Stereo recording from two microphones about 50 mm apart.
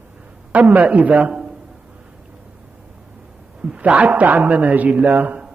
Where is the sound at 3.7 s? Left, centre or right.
Right.